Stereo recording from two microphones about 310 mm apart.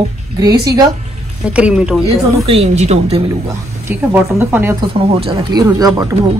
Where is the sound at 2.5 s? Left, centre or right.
Centre.